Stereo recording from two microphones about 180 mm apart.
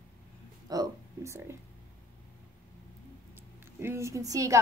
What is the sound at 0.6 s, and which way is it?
Speech, 20° right (ahead or behind).